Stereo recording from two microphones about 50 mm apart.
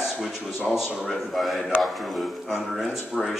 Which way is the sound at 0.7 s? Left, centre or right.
Centre.